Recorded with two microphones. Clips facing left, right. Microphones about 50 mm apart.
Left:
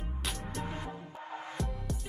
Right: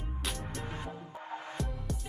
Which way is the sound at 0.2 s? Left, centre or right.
Centre.